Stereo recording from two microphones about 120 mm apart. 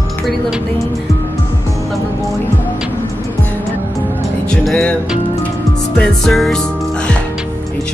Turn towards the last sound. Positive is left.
turn(degrees=5)  # may be behind; listen again after turning